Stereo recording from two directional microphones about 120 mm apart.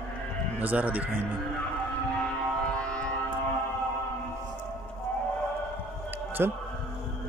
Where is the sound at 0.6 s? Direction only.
10° right (ahead or behind).